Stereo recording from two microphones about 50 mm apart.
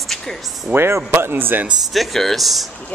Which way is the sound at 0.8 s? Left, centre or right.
Right.